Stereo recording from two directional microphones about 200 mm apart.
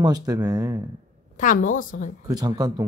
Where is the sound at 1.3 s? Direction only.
40° left (ahead or behind).